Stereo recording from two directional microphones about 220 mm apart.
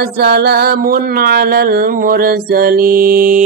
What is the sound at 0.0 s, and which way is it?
Music, 45° right (ahead or behind).